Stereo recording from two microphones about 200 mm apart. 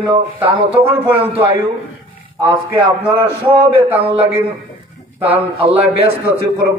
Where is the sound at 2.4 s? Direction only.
10° right (ahead or behind).